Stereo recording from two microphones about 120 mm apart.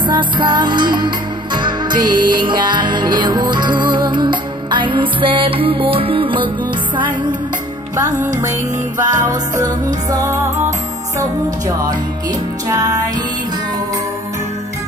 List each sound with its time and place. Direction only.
0.0 s music: 40° right (ahead or behind)
8.4 s music: 25° right (ahead or behind)
12.6 s music: 30° right (ahead or behind)